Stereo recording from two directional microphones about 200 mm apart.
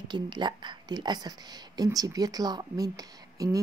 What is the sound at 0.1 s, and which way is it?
Speech, 25° right (ahead or behind).